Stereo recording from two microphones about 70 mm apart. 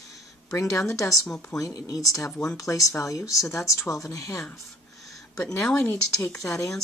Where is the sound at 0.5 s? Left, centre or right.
Left.